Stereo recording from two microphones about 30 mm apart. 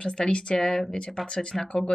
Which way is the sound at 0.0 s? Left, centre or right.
Left.